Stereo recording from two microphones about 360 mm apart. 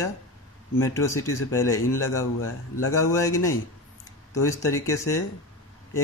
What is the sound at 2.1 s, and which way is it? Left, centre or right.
A man's voice, left.